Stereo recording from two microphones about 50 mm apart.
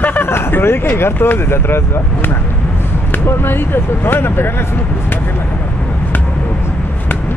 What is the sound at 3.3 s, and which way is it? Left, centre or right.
Speech, left.